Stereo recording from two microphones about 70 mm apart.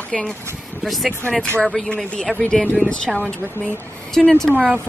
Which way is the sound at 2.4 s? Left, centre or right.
Centre.